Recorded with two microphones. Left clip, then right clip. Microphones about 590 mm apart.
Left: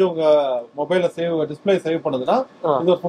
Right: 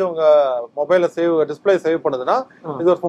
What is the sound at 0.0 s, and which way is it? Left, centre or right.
A man's voice, right.